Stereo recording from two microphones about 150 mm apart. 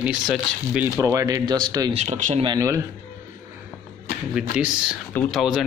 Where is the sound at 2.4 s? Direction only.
25° right (ahead or behind).